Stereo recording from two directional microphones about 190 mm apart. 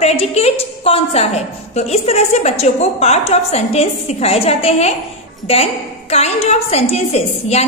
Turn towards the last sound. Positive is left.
turn(degrees=35)  # may be behind; listen again after turning